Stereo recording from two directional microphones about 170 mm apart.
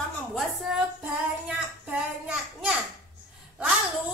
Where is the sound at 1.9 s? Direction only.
5° right (ahead or behind).